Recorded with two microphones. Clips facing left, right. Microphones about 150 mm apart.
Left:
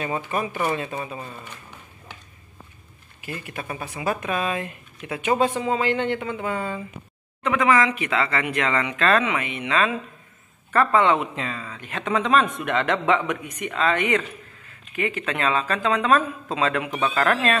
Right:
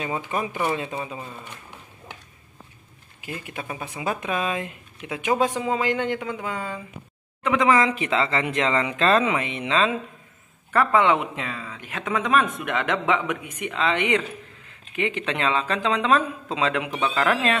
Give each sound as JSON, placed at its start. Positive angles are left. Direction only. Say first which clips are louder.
{"t": 0.0, "sound": "speech", "louder": "left 1 dB", "side_deg": -15}
{"t": 3.4, "sound": "speech", "louder": "left 1 dB", "side_deg": -15}
{"t": 10.7, "sound": "speech", "louder": "left 1 dB", "side_deg": -10}